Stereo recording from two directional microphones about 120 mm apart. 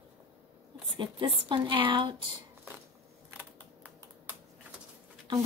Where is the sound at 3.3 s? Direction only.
15° right (ahead or behind).